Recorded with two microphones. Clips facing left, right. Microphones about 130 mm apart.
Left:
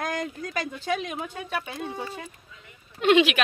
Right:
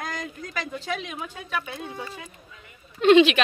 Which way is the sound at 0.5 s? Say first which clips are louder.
Left 2 dB; 45° left (ahead or behind).